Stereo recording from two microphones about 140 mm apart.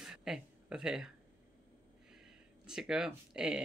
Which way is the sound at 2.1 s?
5° right (ahead or behind).